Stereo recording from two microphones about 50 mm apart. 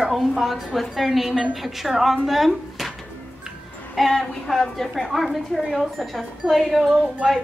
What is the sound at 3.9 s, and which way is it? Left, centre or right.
A woman's voice, centre.